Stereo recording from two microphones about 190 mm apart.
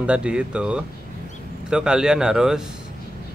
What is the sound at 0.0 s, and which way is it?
Speech, 5° right (ahead or behind).